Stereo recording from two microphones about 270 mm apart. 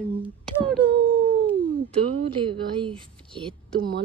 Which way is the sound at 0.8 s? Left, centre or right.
Centre.